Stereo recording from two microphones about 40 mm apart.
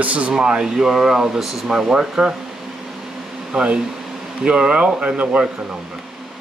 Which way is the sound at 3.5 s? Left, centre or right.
Right.